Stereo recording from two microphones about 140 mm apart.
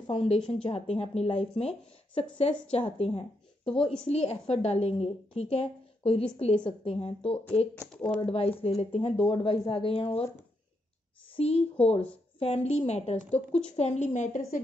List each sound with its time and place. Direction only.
0.0 s a woman's voice: 40° left (ahead or behind)
1.3 s speech: 5° left (ahead or behind)
1.6 s a woman's voice: 45° left (ahead or behind)
7.9 s speech: 5° left (ahead or behind)
8.3 s speech: 45° left (ahead or behind)
11.3 s a woman's voice: 45° left (ahead or behind); by 14.4 s 60° left (ahead or behind)